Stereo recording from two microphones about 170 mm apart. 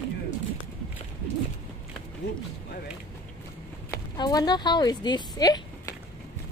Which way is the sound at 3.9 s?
25° left (ahead or behind).